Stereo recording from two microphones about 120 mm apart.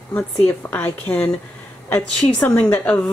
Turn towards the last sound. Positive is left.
turn(degrees=10)  # may be behind; listen again after turning